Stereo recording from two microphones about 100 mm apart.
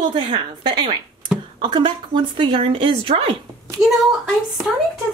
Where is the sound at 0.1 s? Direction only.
55° right (ahead or behind).